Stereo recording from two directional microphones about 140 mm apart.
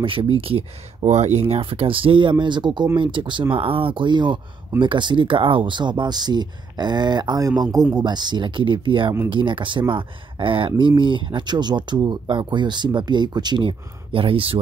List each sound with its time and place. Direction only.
0.0 s speech: 40° right (ahead or behind)